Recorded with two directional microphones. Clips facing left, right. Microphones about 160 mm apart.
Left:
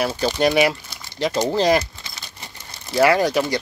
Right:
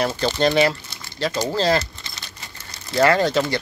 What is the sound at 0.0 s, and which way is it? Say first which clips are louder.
Speech: even; 10° left (ahead or behind).